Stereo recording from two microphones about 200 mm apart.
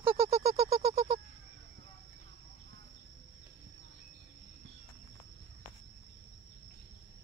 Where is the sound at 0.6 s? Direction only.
20° right (ahead or behind).